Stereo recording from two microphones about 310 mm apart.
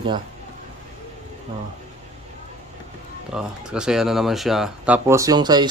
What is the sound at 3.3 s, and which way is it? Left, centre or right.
Speech, centre.